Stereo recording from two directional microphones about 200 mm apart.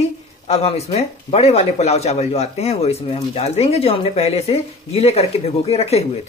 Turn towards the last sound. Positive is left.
turn(degrees=30)  # may be behind; listen again after turning